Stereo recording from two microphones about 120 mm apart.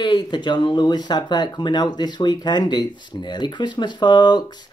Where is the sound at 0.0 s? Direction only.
40° left (ahead or behind).